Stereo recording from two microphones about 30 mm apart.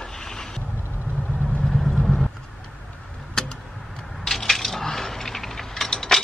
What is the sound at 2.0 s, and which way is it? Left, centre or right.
Vehicle, centre.